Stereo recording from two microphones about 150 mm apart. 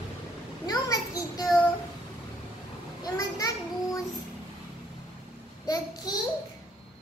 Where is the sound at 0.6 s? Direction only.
25° left (ahead or behind).